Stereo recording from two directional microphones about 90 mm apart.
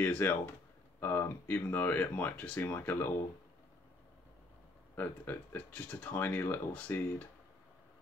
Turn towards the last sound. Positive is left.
turn(degrees=15)  # may be behind; listen again after turning